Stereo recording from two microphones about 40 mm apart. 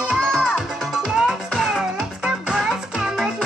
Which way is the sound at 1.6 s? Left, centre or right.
Centre.